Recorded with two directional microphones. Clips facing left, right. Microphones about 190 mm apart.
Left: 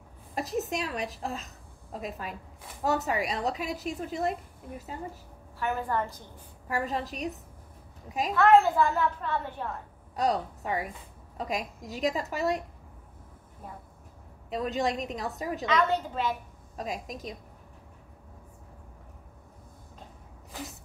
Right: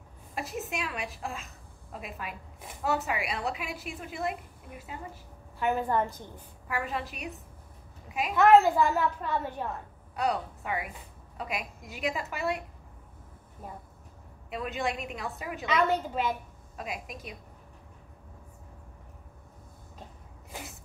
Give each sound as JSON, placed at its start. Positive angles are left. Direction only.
{"t": 0.3, "sound": "a woman's voice", "side_deg": 40}
{"t": 5.6, "sound": "a child's voice", "side_deg": -15}
{"t": 6.7, "sound": "a woman's voice", "side_deg": 40}
{"t": 8.4, "sound": "a child's voice", "side_deg": -10}
{"t": 10.1, "sound": "a woman's voice", "side_deg": 40}
{"t": 14.5, "sound": "a woman's voice", "side_deg": 35}
{"t": 15.6, "sound": "a child's voice", "side_deg": -10}
{"t": 16.7, "sound": "a woman's voice", "side_deg": 40}